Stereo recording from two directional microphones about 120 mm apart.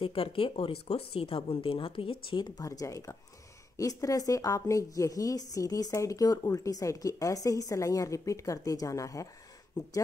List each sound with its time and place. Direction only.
0.0 s speech: 50° left (ahead or behind); by 9.3 s 25° left (ahead or behind)